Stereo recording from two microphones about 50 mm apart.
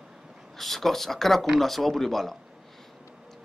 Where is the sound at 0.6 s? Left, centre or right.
Centre.